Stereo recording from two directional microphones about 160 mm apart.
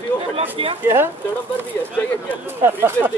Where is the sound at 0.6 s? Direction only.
35° right (ahead or behind).